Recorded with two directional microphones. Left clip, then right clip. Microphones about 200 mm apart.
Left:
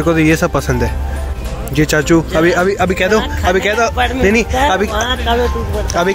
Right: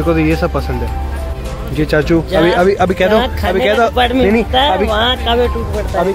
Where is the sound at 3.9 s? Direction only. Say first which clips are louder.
Right 3 dB; 55° right (ahead or behind).